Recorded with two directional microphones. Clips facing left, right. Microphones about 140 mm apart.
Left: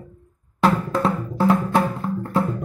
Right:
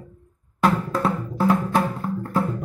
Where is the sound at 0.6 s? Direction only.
25° left (ahead or behind).